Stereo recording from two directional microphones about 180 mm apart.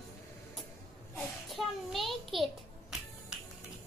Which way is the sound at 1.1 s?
Centre (ahead or behind).